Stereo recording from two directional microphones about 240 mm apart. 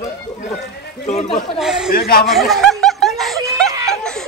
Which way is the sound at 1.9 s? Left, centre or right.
Left.